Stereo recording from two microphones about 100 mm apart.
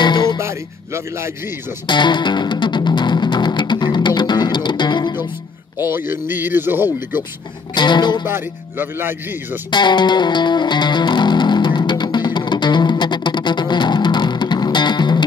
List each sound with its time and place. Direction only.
0.0 s music: 50° left (ahead or behind)
0.4 s speech: 30° right (ahead or behind)
1.9 s music: 50° left (ahead or behind)
5.8 s a man's voice: 20° right (ahead or behind)
7.7 s music: 50° left (ahead or behind)
8.3 s a man's voice: 20° right (ahead or behind)
9.7 s music: 50° left (ahead or behind)